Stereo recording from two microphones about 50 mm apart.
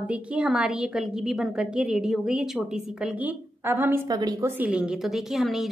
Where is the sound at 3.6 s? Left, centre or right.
Right.